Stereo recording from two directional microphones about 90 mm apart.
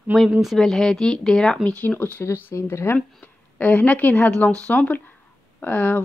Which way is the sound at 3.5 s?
15° left (ahead or behind).